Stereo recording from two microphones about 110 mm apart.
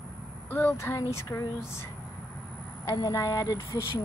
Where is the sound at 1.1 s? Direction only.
25° left (ahead or behind).